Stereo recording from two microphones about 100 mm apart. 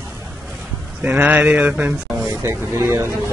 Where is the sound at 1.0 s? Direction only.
15° right (ahead or behind).